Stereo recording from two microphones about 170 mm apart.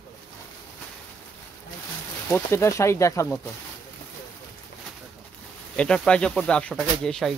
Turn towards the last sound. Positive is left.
turn(degrees=5)  # may be behind; listen again after turning